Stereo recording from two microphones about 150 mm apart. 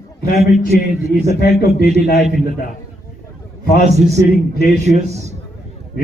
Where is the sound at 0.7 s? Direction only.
85° left.